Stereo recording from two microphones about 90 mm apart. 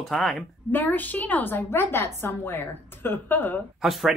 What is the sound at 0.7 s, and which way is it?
A woman's voice, 20° left (ahead or behind).